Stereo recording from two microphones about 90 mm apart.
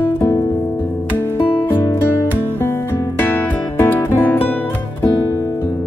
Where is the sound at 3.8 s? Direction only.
20° left (ahead or behind).